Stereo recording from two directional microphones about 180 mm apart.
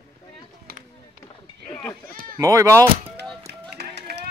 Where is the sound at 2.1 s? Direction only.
55° right (ahead or behind).